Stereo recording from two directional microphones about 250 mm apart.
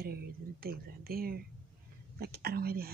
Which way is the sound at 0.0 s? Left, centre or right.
Right.